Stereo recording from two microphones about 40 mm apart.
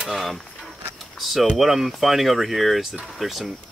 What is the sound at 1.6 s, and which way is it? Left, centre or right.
Speech, centre.